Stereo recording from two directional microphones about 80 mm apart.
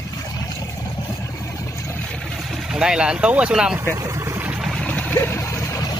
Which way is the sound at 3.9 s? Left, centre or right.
Right.